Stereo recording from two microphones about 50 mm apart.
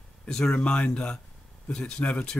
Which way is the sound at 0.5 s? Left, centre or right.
Left.